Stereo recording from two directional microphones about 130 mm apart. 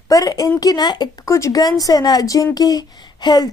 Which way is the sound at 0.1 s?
30° left (ahead or behind).